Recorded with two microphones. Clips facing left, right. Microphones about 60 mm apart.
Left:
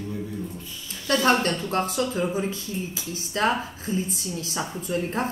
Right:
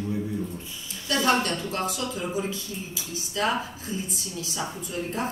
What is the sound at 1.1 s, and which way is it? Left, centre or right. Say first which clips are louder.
A woman's voice: left 2 dB; left.